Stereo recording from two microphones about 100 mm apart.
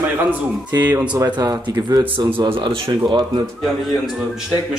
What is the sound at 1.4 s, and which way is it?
Speech, 40° right (ahead or behind).